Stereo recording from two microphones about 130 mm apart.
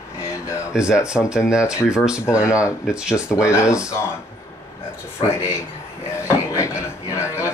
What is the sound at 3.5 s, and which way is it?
Speech, 20° left (ahead or behind).